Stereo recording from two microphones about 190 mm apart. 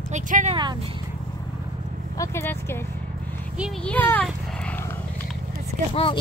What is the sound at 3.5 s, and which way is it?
Speech, 5° right (ahead or behind).